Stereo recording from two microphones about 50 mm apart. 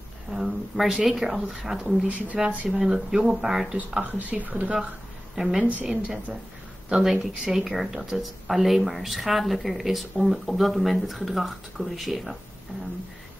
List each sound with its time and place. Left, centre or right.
0.3 s speech: centre
2.0 s speech: right
2.8 s a woman's voice: centre
4.0 s speech: right
5.3 s a woman's voice: centre
5.6 s speech: right
6.9 s a woman's voice: centre